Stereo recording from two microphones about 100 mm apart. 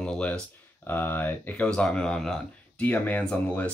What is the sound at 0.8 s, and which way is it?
Speech, 20° left (ahead or behind).